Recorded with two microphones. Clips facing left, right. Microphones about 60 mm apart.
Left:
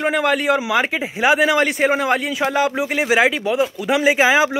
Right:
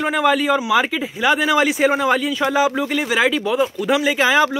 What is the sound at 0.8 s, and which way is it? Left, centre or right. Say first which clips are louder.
Speech: left 1 dB; left.